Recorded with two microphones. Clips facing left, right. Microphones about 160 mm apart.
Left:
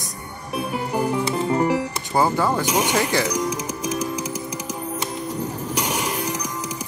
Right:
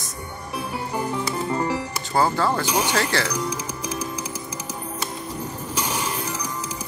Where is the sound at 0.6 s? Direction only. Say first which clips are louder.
Left 4 dB; 20° left (ahead or behind).